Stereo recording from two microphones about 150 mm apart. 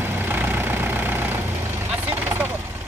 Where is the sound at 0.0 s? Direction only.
15° right (ahead or behind).